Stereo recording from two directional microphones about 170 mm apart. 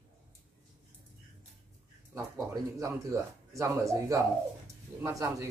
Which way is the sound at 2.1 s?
20° right (ahead or behind).